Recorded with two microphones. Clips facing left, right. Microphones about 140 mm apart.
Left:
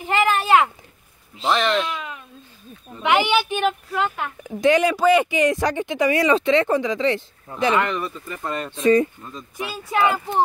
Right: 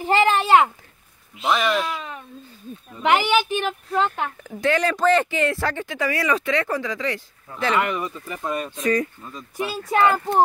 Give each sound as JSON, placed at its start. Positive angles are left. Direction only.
{"t": 0.0, "sound": "a sound", "side_deg": -30}
{"t": 1.5, "sound": "speech", "side_deg": -5}
{"t": 2.0, "sound": "a sound", "side_deg": -35}
{"t": 3.0, "sound": "speech", "side_deg": -40}
{"t": 4.4, "sound": "speech", "side_deg": 15}
{"t": 7.8, "sound": "speech", "side_deg": -10}
{"t": 8.7, "sound": "speech", "side_deg": 25}
{"t": 9.9, "sound": "speech", "side_deg": -35}